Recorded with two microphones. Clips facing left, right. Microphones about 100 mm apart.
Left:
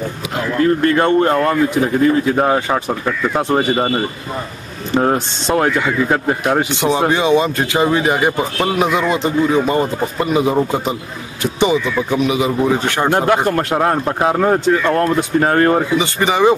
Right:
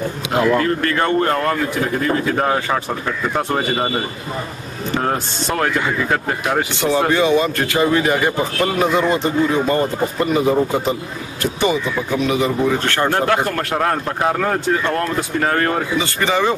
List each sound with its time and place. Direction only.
0.7 s speech: 20° left (ahead or behind)
5.0 s speech: 20° left (ahead or behind)
14.9 s speech: 30° left (ahead or behind)